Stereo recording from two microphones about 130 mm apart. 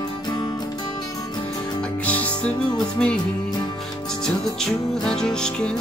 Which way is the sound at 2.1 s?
10° left (ahead or behind).